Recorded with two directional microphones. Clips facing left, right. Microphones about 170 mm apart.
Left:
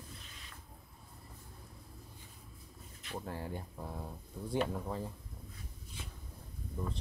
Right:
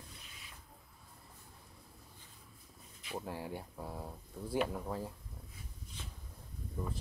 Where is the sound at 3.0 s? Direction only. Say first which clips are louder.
Even; 5° right (ahead or behind).